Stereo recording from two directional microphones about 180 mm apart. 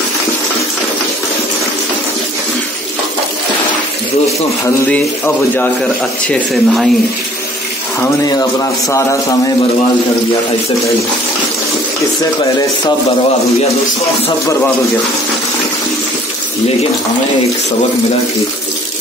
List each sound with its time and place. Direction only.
4.6 s a sound: 10° left (ahead or behind)
6.2 s speech: centre (ahead or behind)
8.0 s speech: 20° left (ahead or behind)